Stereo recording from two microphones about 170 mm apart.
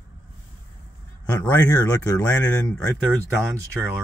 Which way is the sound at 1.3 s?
20° left (ahead or behind).